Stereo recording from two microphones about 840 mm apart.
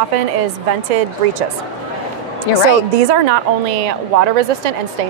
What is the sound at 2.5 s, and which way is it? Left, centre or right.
Speech, left.